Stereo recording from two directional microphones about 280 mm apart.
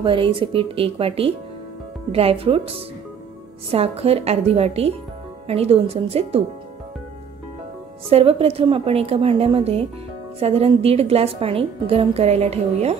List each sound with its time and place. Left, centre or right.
0.0 s a woman's voice: centre
8.1 s a woman's voice: right